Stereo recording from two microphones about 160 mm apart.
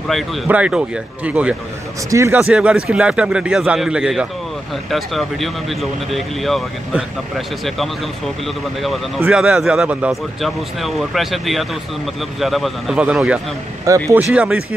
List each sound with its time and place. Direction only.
0.5 s a man's voice: 5° right (ahead or behind)
2.4 s a man's voice: 5° right (ahead or behind)
9.2 s speech: 5° right (ahead or behind)
13.9 s speech: 20° right (ahead or behind)
14.3 s a man's voice: 10° right (ahead or behind)